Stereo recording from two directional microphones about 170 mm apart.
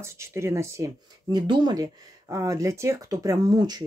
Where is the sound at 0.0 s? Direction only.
15° right (ahead or behind).